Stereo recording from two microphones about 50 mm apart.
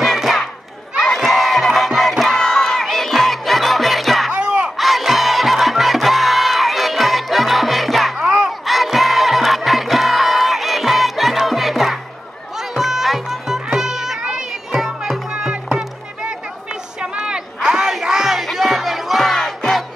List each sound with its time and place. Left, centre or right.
0.0 s crowd: centre
2.3 s crowd: centre
4.3 s a sound: right
4.7 s music: centre
8.2 s crowd: centre
8.5 s music: centre; by 15.8 s right
17.0 s music: centre